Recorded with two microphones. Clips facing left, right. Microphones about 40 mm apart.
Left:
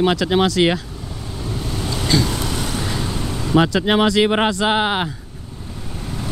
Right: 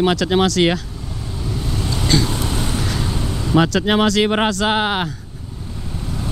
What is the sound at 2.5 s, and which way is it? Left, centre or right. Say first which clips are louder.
Vehicle: right 1 dB; right.